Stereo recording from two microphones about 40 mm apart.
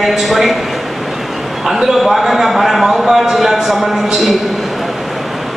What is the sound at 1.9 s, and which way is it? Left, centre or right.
A man's voice, centre.